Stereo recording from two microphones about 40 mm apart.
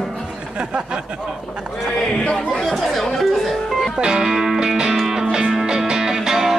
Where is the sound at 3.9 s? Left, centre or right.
Centre.